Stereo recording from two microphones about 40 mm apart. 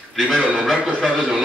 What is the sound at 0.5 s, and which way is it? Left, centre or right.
Speech, centre.